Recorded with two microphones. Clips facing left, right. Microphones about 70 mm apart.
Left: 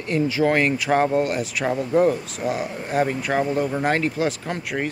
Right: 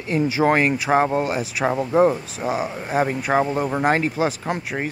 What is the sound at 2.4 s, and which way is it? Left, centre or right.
Speech, centre.